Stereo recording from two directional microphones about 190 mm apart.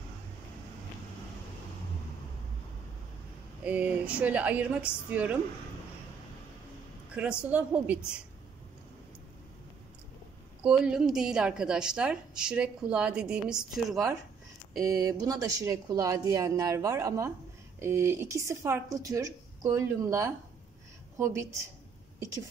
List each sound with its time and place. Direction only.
3.6 s a woman's voice: 10° right (ahead or behind)
7.2 s a woman's voice: 5° right (ahead or behind)
10.6 s a woman's voice: 5° right (ahead or behind)
14.8 s a woman's voice: 15° right (ahead or behind)